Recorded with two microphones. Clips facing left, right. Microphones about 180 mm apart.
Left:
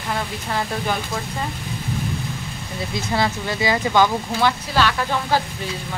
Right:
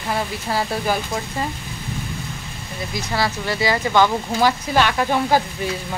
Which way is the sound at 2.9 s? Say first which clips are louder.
Left 1 dB; 20° left (ahead or behind).